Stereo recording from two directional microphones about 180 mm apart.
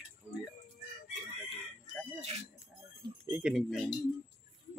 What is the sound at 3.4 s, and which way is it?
Speech, centre (ahead or behind).